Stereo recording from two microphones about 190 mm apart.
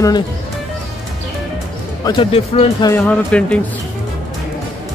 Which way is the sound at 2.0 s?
25° left (ahead or behind).